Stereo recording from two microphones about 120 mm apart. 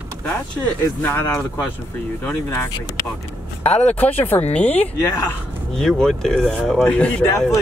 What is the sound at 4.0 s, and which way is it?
Speech, 15° left (ahead or behind).